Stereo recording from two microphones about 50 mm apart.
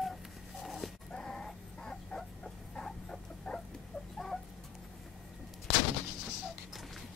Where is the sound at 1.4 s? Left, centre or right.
Centre.